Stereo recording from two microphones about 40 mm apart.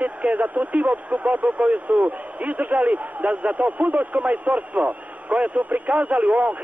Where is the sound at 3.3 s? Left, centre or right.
Right.